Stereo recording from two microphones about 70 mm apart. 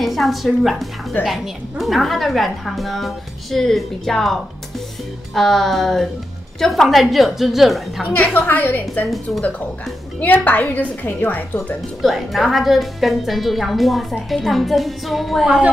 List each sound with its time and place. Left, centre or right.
0.0 s a woman's voice: centre
8.1 s a woman's voice: left
9.0 s a woman's voice: centre
10.2 s a woman's voice: left
12.0 s a woman's voice: centre